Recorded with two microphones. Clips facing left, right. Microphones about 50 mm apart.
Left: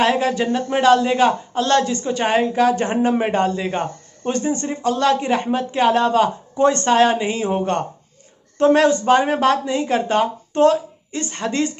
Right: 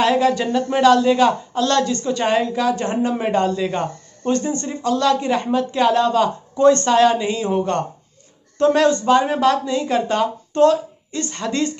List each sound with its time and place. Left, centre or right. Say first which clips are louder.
0.0 s a woman's voice: right 1 dB; left